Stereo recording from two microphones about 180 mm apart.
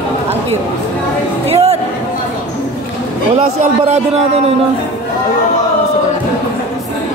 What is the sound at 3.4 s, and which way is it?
Speech, 35° right (ahead or behind).